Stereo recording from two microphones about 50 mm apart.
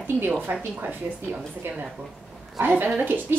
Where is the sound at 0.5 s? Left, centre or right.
Right.